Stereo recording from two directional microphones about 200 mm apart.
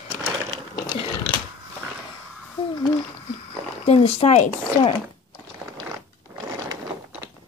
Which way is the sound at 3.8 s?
30° left (ahead or behind).